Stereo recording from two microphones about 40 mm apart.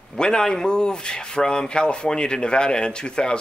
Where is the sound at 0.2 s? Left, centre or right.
Left.